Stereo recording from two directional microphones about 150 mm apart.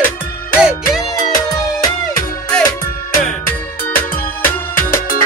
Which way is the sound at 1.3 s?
25° left (ahead or behind).